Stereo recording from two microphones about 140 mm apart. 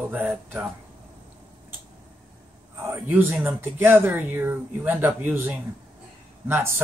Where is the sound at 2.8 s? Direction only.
15° right (ahead or behind).